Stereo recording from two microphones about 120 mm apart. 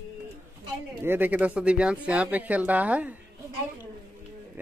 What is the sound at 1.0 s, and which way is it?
Speech, 15° right (ahead or behind).